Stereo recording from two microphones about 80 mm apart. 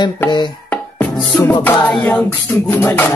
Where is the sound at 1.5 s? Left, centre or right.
Left.